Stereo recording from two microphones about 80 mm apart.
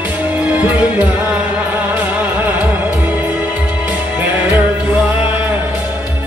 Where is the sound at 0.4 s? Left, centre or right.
Right.